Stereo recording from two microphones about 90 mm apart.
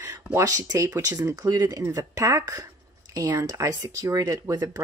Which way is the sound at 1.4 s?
45° right (ahead or behind).